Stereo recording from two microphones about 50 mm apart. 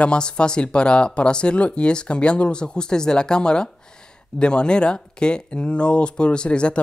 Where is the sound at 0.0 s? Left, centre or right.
Centre.